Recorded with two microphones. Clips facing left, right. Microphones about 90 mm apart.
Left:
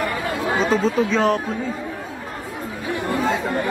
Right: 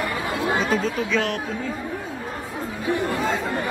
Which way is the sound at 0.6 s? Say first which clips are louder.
Left 4 dB; 35° left (ahead or behind).